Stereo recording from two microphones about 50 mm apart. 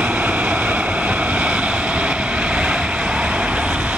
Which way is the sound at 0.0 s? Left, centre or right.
Right.